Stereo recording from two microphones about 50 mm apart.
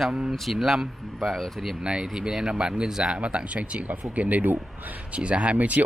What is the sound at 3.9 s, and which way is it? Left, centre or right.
Speech, right.